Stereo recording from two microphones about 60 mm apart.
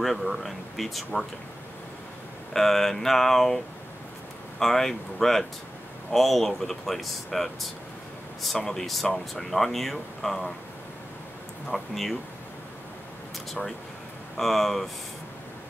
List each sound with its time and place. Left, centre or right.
0.0 s speech: centre
2.5 s speech: centre
11.7 s speech: centre
13.5 s speech: centre